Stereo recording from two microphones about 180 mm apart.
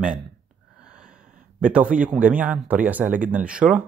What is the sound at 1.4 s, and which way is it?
Speech, 5° right (ahead or behind).